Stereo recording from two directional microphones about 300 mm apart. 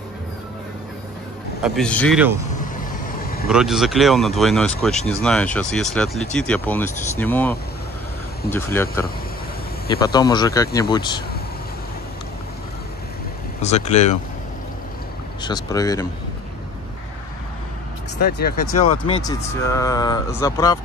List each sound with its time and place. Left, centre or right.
1.6 s speech: centre
3.2 s vehicle: left
3.4 s speech: centre
9.8 s speech: centre
13.6 s speech: left
15.4 s speech: centre
18.9 s speech: centre